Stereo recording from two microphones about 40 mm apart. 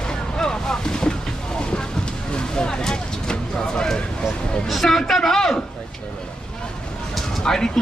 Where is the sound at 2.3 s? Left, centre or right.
Left.